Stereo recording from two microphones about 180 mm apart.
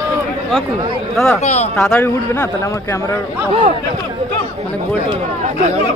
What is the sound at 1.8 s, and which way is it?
Speech, 10° left (ahead or behind).